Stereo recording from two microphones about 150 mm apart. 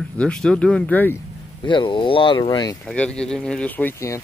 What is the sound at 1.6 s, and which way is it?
Speech, 30° left (ahead or behind).